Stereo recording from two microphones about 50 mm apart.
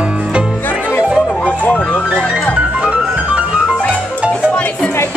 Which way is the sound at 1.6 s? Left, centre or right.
Left.